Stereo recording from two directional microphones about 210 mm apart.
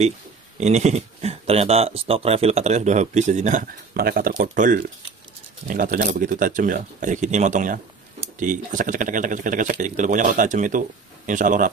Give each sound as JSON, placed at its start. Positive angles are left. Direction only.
{"t": 0.6, "sound": "speech", "side_deg": -35}